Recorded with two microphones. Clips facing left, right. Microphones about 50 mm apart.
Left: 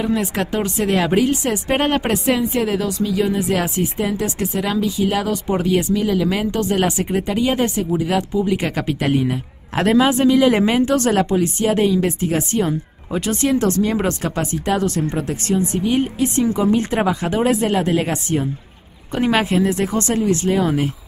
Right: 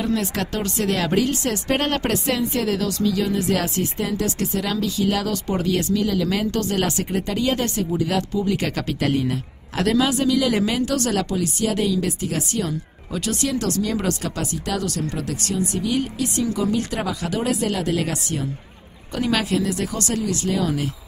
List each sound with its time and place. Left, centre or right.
0.0 s speech: centre
9.8 s speech: left